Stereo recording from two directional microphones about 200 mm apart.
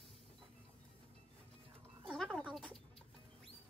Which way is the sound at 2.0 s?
5° left (ahead or behind).